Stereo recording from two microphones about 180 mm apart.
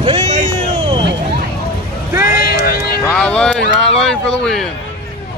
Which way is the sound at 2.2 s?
60° left (ahead or behind).